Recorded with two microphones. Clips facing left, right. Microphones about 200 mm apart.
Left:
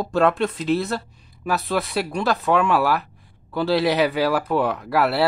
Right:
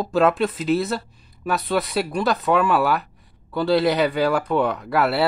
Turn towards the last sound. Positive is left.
turn(degrees=0)  # may be behind; listen again after turning